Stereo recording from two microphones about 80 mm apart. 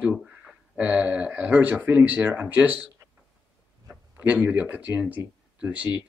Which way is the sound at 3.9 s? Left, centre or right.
Centre.